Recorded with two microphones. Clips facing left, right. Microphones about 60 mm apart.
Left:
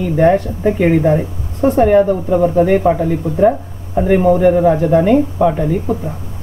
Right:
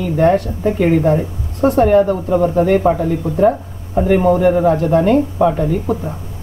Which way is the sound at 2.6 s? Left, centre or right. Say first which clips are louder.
Left 1 dB; centre.